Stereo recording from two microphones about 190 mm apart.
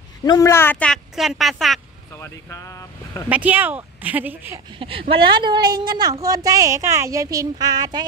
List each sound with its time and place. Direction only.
0.2 s speech: 15° left (ahead or behind); by 1.8 s centre (ahead or behind)
2.1 s speech: 15° left (ahead or behind)
3.3 s speech: 10° right (ahead or behind)
4.7 s speech: 30° right (ahead or behind)